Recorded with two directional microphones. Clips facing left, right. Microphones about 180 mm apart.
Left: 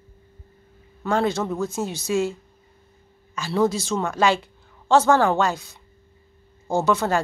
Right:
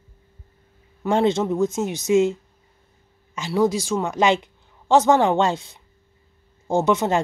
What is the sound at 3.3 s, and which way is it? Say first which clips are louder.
A woman's voice: right 1 dB; 15° right (ahead or behind).